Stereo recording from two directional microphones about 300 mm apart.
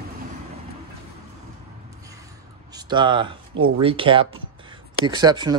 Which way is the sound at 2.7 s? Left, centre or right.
Centre.